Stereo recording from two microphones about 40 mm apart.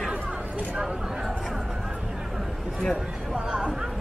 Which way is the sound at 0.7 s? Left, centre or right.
Centre.